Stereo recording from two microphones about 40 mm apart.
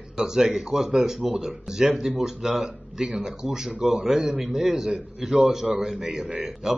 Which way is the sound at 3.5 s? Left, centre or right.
Centre.